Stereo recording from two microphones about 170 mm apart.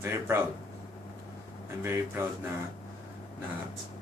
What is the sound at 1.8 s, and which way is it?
Speech, 15° right (ahead or behind).